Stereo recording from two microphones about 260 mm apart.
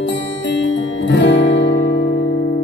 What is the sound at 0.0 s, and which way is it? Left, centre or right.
Music, left.